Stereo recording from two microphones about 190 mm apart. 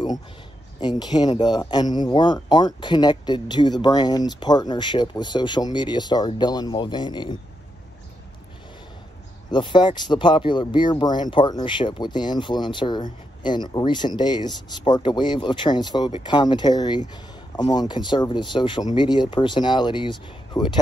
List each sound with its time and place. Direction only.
0.7 s speech: 25° left (ahead or behind)
9.5 s speech: 25° left (ahead or behind)